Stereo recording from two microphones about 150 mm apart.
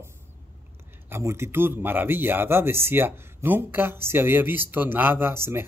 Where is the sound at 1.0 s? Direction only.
15° right (ahead or behind).